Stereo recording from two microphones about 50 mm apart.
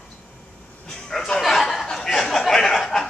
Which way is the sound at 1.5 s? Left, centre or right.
Centre.